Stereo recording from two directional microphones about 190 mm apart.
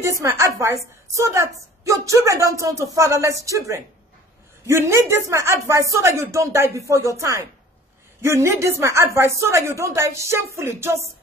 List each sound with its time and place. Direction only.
0.0 s speech: 15° right (ahead or behind)